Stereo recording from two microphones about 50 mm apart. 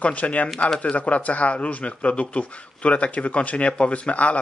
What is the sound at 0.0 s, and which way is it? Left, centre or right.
Speech, left.